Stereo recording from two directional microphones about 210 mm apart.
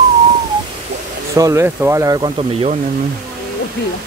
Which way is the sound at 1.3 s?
15° right (ahead or behind).